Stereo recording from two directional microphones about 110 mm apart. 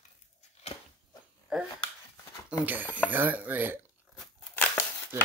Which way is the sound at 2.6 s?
15° right (ahead or behind).